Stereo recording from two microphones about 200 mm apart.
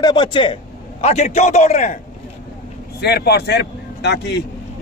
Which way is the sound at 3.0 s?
55° left (ahead or behind).